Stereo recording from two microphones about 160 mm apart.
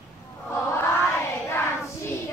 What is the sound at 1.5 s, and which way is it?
Child singing, 15° left (ahead or behind).